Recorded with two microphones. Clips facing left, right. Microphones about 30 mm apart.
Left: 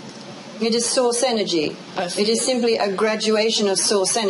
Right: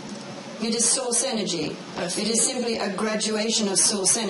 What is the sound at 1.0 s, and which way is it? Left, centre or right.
A man's voice, left.